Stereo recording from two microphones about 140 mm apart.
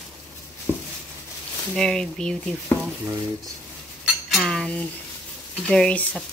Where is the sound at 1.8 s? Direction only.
5° left (ahead or behind).